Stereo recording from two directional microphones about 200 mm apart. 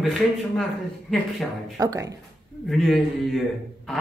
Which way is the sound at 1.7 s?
15° right (ahead or behind).